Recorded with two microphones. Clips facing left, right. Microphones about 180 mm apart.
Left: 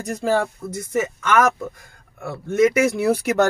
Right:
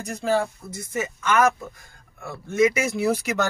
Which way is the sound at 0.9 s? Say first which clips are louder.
Left 3 dB; 80° left.